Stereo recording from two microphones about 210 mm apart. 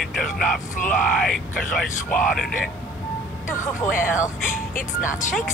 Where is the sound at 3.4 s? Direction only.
40° left (ahead or behind).